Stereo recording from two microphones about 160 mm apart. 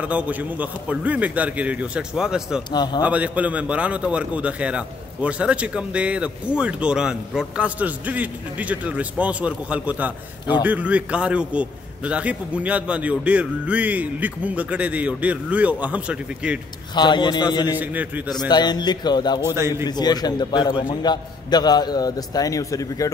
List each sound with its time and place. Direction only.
0.0 s a man's voice: 10° right (ahead or behind)
2.7 s a man's voice: 25° left (ahead or behind)
3.0 s a man's voice: 10° right (ahead or behind)
16.9 s a man's voice: 30° left (ahead or behind)
17.7 s a man's voice: 10° right (ahead or behind)
18.3 s a man's voice: 25° left (ahead or behind)